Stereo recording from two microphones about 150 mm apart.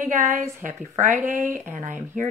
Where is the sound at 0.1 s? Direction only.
55° right (ahead or behind).